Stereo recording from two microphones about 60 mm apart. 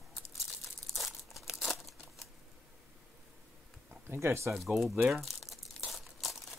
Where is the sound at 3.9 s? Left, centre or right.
Right.